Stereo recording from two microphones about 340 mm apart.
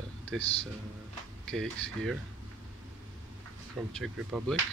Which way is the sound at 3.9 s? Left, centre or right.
Centre.